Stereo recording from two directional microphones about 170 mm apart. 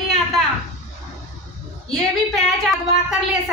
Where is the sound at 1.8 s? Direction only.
Centre (ahead or behind).